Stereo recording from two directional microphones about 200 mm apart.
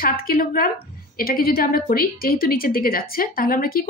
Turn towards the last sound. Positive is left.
turn(degrees=45)  # may be behind; listen again after turning